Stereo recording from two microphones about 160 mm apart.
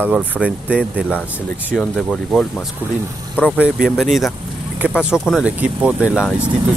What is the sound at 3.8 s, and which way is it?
Speech, centre (ahead or behind).